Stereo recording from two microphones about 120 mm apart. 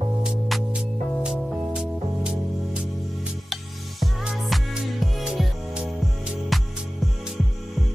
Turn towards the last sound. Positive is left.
turn(degrees=0)  # may be behind; listen again after turning